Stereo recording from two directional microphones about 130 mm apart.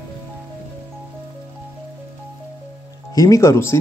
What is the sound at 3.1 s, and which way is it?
Speech, 25° left (ahead or behind).